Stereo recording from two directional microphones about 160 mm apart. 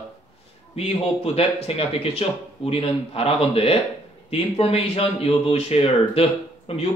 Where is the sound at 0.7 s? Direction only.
40° left (ahead or behind).